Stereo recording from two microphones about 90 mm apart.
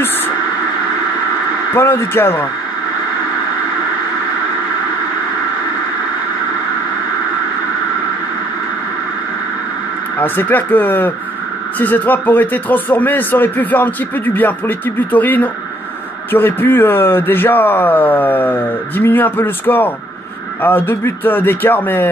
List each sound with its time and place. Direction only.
1.7 s speech: 25° left (ahead or behind)
10.1 s speech: 20° left (ahead or behind)